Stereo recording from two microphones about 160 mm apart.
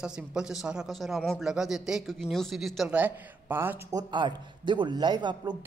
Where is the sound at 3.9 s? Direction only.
30° right (ahead or behind).